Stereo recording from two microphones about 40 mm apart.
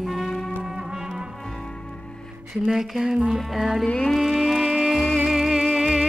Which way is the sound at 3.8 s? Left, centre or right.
Left.